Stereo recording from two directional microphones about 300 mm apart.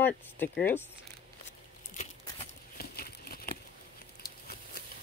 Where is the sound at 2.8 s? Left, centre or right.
Left.